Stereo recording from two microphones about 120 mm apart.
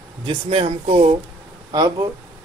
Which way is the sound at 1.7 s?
35° right (ahead or behind).